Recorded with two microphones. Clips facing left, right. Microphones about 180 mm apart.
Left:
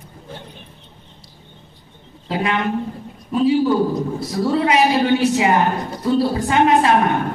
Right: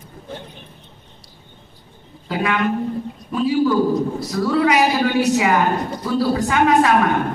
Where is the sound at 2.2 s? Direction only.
25° left (ahead or behind).